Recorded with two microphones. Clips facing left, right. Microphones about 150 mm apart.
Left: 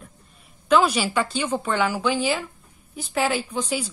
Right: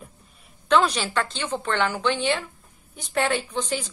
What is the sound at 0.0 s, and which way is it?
A woman's voice, centre (ahead or behind).